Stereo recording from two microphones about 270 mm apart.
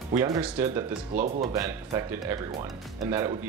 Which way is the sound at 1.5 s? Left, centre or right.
Centre.